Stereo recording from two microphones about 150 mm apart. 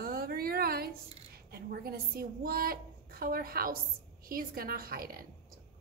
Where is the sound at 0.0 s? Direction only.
90° right.